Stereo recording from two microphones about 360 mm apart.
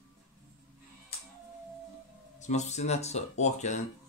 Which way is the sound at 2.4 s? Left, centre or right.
Centre.